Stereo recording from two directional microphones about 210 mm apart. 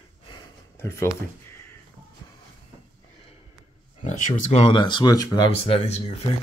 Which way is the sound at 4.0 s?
35° left (ahead or behind).